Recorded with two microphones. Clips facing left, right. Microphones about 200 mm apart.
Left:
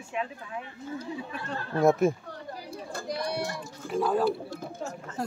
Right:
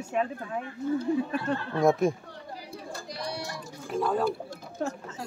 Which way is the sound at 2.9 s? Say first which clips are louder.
Left 6 dB; 55° left (ahead or behind).